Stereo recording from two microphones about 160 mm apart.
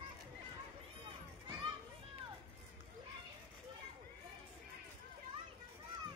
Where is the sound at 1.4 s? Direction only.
30° right (ahead or behind).